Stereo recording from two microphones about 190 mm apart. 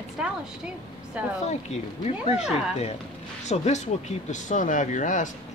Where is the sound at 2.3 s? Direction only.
35° left (ahead or behind).